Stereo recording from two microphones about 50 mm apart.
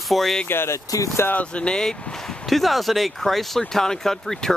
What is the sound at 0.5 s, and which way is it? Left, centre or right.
Speech, left.